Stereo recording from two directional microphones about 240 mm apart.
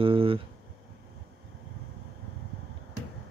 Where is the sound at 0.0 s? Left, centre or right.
Right.